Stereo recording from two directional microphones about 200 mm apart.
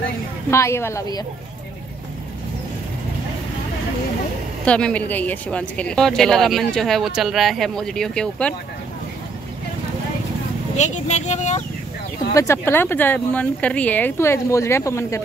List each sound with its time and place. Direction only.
0.5 s speech: 15° left (ahead or behind)
4.6 s speech: 5° left (ahead or behind)
10.8 s speech: 35° left (ahead or behind)
12.4 s speech: 10° left (ahead or behind)